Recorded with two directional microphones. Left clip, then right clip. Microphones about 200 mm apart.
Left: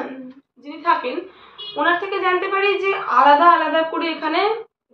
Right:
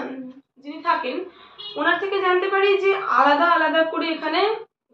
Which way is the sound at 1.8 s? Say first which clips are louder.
Left 2 dB; 10° left (ahead or behind).